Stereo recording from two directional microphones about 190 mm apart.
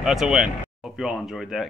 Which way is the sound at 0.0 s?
Centre (ahead or behind).